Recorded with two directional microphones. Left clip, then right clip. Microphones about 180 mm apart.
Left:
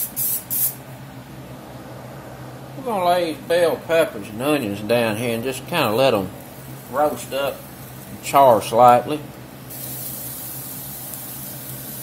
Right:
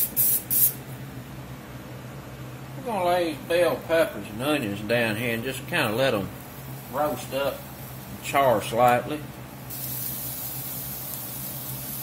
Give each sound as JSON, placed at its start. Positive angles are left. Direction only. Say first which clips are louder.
{"t": 2.9, "sound": "speech", "louder": "left 5 dB", "side_deg": 45}
{"t": 4.5, "sound": "speech", "louder": "left 5 dB", "side_deg": 25}
{"t": 6.9, "sound": "speech", "louder": "left 7 dB", "side_deg": 50}
{"t": 8.3, "sound": "speech", "louder": "left 8 dB", "side_deg": 25}